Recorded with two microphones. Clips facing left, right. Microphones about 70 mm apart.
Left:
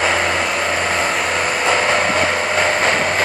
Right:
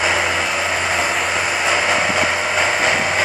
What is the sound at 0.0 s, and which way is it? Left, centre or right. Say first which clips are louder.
Hair dryer: left 1 dB; centre.